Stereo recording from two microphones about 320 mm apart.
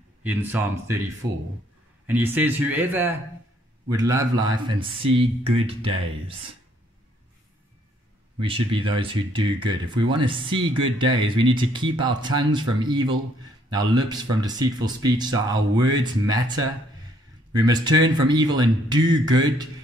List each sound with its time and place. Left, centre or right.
0.2 s speech: centre
2.0 s speech: centre
8.4 s speech: centre